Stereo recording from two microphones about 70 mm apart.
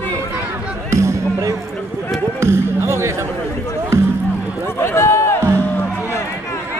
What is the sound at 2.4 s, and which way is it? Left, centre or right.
Speech, right.